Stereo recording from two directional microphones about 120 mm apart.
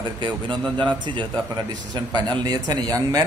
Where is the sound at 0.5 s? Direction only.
10° left (ahead or behind).